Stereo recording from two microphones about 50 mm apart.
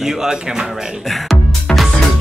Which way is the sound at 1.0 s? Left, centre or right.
Centre.